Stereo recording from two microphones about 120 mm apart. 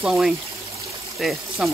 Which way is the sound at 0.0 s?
Centre (ahead or behind).